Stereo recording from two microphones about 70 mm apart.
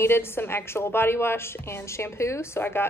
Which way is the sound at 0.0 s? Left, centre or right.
Left.